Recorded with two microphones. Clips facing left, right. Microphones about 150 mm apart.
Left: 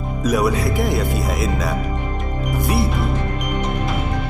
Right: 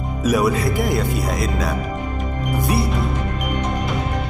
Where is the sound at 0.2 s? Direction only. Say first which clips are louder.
Right 1 dB; centre (ahead or behind).